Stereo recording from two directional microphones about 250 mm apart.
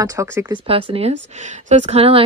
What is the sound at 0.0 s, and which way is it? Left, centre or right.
Speech, centre.